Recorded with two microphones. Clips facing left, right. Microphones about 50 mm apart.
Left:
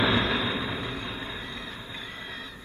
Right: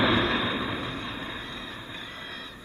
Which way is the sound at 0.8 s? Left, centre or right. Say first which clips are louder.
Even; left.